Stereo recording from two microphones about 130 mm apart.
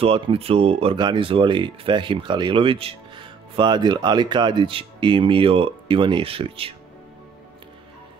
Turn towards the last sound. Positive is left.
turn(degrees=-45)  # may be behind; listen again after turning